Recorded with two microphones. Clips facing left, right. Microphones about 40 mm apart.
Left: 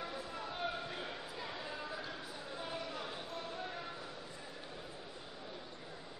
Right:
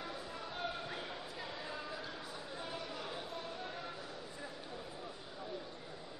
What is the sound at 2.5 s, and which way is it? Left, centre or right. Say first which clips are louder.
Chatter: left 2 dB; centre.